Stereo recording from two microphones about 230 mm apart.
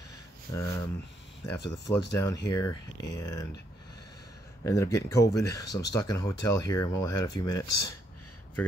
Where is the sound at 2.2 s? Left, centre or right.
Centre.